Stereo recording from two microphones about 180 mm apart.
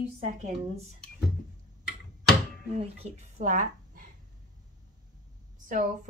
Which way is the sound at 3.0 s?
40° right (ahead or behind).